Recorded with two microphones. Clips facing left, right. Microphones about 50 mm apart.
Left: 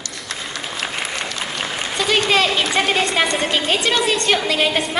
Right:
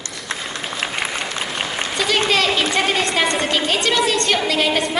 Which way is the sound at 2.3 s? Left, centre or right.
Left.